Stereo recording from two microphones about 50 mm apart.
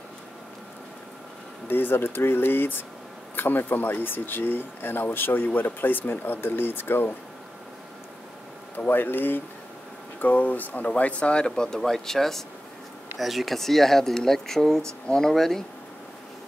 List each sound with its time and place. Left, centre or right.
1.7 s speech: left
8.7 s speech: left; by 15.6 s centre